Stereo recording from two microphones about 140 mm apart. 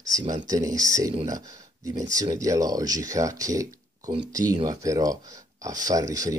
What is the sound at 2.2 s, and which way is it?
Speech, 25° right (ahead or behind).